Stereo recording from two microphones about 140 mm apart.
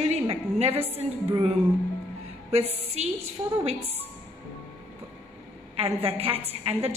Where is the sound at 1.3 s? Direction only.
40° right (ahead or behind).